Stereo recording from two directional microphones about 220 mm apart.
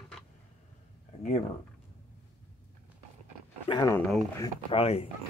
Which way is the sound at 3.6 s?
15° left (ahead or behind).